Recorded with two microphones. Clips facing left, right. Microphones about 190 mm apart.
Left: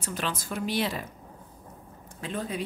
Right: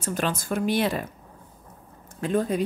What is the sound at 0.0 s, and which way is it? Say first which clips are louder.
Speech: right 5 dB; 45° right (ahead or behind).